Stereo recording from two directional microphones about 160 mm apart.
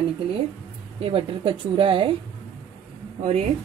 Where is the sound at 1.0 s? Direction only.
35° right (ahead or behind).